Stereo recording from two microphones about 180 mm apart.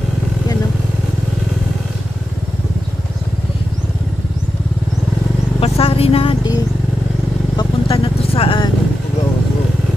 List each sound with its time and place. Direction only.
5.6 s vehicle: 30° left (ahead or behind)